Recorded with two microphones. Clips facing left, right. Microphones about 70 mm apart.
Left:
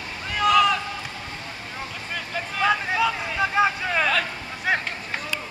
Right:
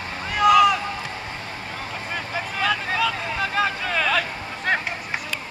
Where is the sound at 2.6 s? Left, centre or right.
Centre.